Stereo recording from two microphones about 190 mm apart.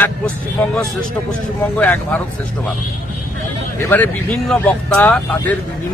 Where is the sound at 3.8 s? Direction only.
10° left (ahead or behind).